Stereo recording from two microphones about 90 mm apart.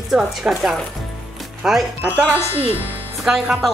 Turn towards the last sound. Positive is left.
turn(degrees=-5)  # may be behind; listen again after turning